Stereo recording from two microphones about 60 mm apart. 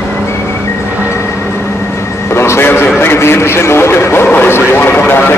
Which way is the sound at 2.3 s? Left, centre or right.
Left.